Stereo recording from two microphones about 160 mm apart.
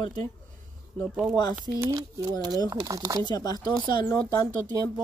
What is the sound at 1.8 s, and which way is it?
Speech, 15° right (ahead or behind).